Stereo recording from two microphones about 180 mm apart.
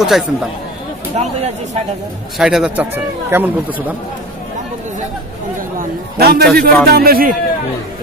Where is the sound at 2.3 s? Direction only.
5° right (ahead or behind).